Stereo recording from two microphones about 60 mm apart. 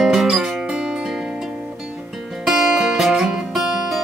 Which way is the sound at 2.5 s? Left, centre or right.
Centre.